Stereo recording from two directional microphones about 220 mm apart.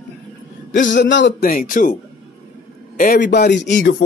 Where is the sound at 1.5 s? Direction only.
40° left (ahead or behind).